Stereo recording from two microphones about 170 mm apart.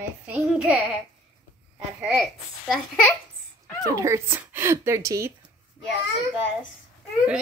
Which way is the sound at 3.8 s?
20° right (ahead or behind).